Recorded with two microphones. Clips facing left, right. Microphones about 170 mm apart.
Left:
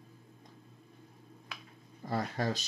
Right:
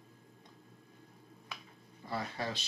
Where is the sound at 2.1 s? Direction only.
45° left (ahead or behind).